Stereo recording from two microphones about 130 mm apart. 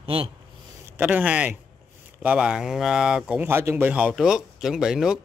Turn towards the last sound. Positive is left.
turn(degrees=-5)  # may be behind; listen again after turning